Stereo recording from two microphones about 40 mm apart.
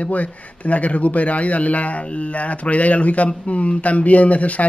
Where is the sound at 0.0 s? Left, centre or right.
Left.